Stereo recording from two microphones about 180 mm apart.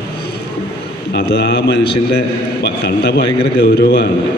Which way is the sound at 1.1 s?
70° left (ahead or behind).